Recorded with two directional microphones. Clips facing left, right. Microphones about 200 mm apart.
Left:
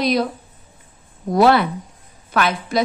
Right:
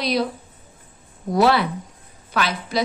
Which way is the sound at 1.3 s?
50° left (ahead or behind).